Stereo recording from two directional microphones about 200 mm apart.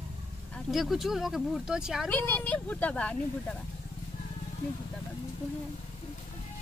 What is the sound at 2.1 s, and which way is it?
Speech, 10° left (ahead or behind).